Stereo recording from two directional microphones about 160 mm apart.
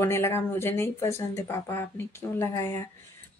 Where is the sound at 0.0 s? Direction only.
15° left (ahead or behind).